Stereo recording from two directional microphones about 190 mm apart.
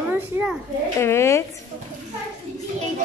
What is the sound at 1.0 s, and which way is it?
Speech, 15° left (ahead or behind).